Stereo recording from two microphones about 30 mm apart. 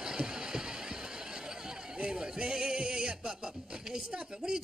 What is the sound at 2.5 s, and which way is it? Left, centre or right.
Music, right.